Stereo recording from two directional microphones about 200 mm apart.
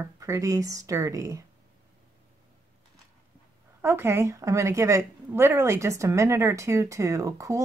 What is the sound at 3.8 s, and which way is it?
A woman's voice, 10° right (ahead or behind).